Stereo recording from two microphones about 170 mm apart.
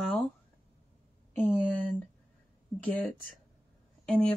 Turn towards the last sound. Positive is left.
turn(degrees=5)  # may be behind; listen again after turning